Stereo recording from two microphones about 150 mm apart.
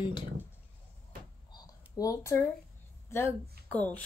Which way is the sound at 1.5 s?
25° left (ahead or behind).